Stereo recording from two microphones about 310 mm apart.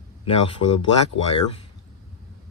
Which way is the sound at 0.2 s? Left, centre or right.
Left.